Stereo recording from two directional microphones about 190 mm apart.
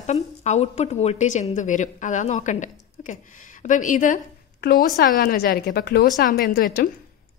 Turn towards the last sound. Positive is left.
turn(degrees=50)  # may be behind; listen again after turning